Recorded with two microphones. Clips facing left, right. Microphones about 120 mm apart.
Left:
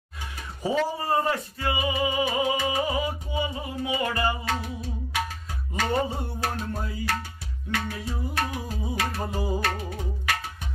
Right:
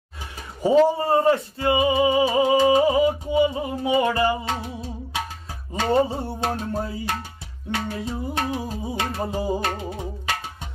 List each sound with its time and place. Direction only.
0.7 s music: 25° right (ahead or behind)
5.8 s music: 25° right (ahead or behind)